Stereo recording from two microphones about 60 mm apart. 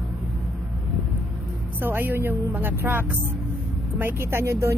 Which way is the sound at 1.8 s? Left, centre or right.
Right.